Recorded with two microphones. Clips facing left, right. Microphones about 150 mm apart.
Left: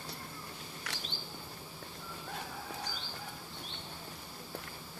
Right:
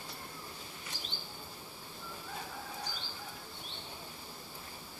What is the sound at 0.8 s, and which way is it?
Insect, 75° left (ahead or behind).